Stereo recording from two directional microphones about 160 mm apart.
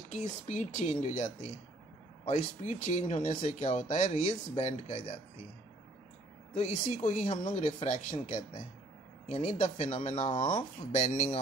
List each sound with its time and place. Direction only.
0.1 s speech: 45° left (ahead or behind)
6.5 s speech: 45° left (ahead or behind)